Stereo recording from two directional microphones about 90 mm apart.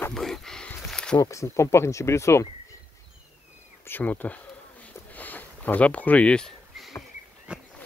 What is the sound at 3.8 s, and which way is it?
Speech, 20° left (ahead or behind).